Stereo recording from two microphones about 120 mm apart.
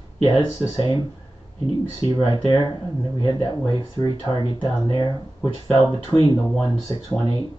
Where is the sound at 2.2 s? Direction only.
35° left (ahead or behind).